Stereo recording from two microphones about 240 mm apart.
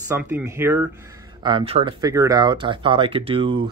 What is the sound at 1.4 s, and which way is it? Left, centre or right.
Speech, right.